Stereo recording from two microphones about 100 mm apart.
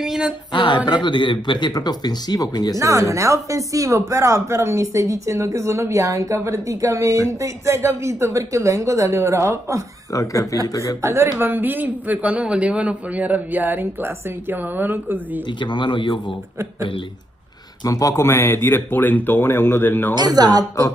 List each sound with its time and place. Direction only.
0.0 s a sound: 5° right (ahead or behind)
0.5 s speech: 50° left (ahead or behind)
2.8 s a woman's voice: 30° right (ahead or behind)
10.1 s speech: 35° left (ahead or behind)
11.0 s a man's voice: 30° right (ahead or behind)
15.6 s speech: 50° left (ahead or behind)
17.8 s speech: 35° left (ahead or behind)
20.2 s a woman's voice: 45° right (ahead or behind)